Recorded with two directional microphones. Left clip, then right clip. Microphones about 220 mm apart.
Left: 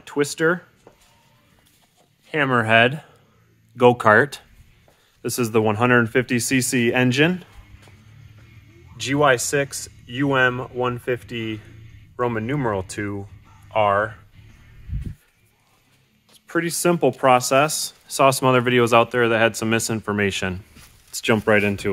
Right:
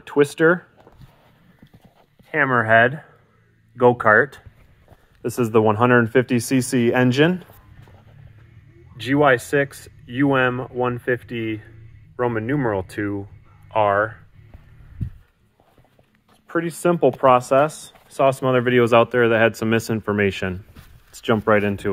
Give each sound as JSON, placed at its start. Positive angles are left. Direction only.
{"t": 0.0, "sound": "speech", "side_deg": -15}
{"t": 2.3, "sound": "speech", "side_deg": 25}
{"t": 5.2, "sound": "speech", "side_deg": 0}
{"t": 8.9, "sound": "speech", "side_deg": 0}
{"t": 16.4, "sound": "a sound", "side_deg": 15}
{"t": 16.8, "sound": "speech", "side_deg": 10}
{"t": 18.9, "sound": "speech", "side_deg": 0}
{"t": 21.1, "sound": "speech", "side_deg": 10}